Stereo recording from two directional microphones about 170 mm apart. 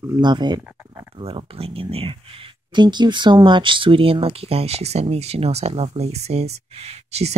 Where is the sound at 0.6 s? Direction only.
10° right (ahead or behind).